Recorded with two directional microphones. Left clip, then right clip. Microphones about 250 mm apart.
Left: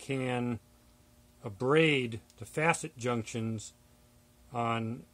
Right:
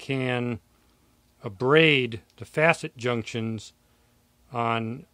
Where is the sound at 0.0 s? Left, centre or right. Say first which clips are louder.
Right 6 dB; right.